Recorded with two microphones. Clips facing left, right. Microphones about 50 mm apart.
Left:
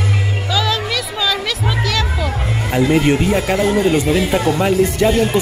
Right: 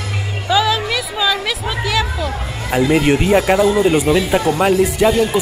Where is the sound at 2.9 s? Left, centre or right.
Right.